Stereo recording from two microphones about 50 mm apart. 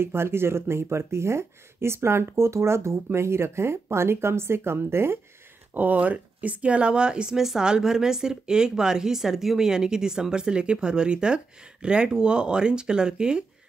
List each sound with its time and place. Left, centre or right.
0.0 s speech: right
5.8 s speech: right; by 13.5 s centre